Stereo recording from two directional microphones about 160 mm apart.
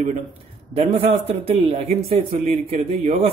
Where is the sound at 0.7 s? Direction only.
40° right (ahead or behind).